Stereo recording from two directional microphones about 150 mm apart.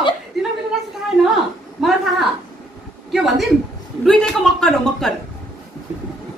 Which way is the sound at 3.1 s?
Centre (ahead or behind).